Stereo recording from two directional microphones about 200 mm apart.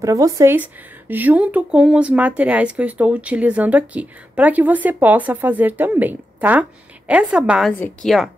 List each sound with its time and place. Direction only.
0.0 s a woman's voice: 15° right (ahead or behind); by 8.3 s centre (ahead or behind)